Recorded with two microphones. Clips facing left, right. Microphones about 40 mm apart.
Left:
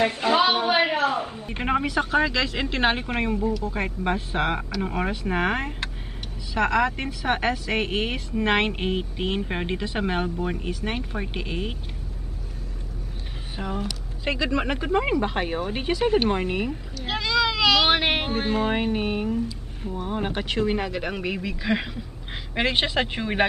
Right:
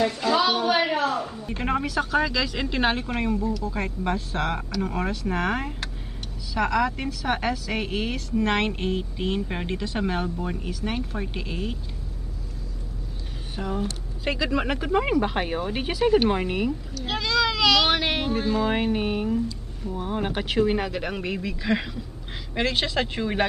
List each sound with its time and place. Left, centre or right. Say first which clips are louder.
0.0 s a sound: left 2 dB; left
1.0 s speech: left 1 dB; left
13.6 s speech: right 1 dB; left
14.2 s speech: even; centre
17.1 s a sound: left 1 dB; centre
17.9 s speech: left 1 dB; left
18.7 s speech: even; centre